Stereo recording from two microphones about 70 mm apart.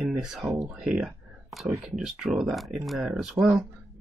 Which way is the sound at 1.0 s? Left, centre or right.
Centre.